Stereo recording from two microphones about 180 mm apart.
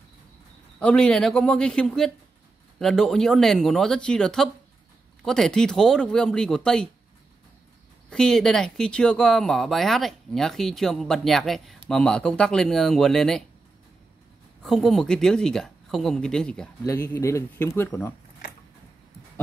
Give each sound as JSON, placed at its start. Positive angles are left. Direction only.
{"t": 0.7, "sound": "speech", "side_deg": 5}
{"t": 8.1, "sound": "speech", "side_deg": 5}
{"t": 14.6, "sound": "speech", "side_deg": 0}
{"t": 16.8, "sound": "speech", "side_deg": 15}